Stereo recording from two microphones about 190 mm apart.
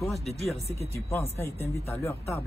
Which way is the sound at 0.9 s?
15° left (ahead or behind).